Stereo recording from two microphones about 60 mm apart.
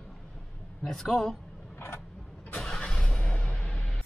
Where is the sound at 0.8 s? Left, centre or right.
Centre.